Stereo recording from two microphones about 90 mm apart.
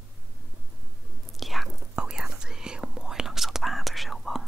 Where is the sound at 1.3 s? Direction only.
Centre (ahead or behind).